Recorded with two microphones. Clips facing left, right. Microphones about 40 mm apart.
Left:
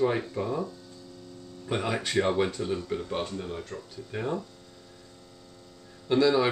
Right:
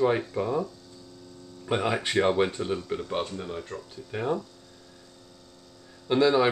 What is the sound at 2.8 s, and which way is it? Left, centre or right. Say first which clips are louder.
Speech: right 1 dB; centre.